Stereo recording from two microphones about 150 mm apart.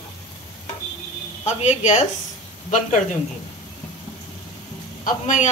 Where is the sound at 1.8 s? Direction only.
50° left (ahead or behind).